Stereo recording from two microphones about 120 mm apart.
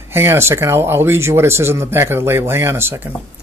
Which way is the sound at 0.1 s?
20° right (ahead or behind).